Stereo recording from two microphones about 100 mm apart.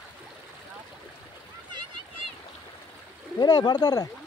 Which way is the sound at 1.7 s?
50° right (ahead or behind).